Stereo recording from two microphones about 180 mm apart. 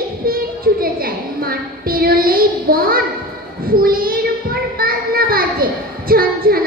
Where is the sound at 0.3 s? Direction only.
55° right (ahead or behind).